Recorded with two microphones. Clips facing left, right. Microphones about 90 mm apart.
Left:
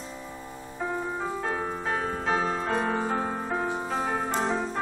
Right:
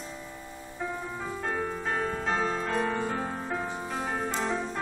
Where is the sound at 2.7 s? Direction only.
30° left (ahead or behind).